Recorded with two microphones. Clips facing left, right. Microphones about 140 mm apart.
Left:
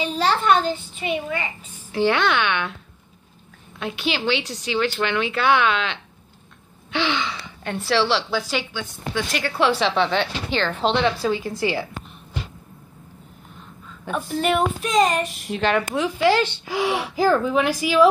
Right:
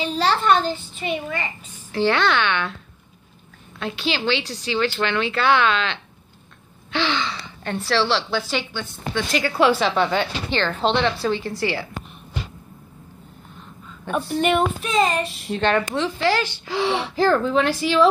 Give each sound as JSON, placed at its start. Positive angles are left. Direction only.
{"t": 0.0, "sound": "a child's voice", "side_deg": 10}
{"t": 3.8, "sound": "a child's voice", "side_deg": 15}
{"t": 14.1, "sound": "a woman's voice", "side_deg": 0}